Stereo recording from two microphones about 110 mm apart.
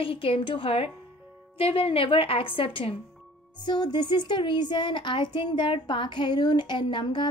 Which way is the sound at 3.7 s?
40° left (ahead or behind).